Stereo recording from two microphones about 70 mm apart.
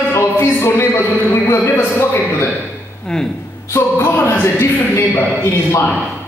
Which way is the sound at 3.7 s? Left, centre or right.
Left.